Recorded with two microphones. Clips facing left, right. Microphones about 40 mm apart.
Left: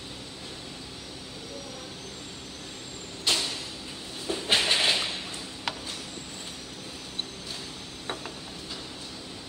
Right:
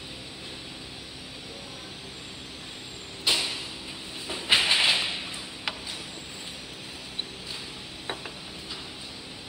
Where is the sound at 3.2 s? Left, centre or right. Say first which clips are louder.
Right 1 dB; centre.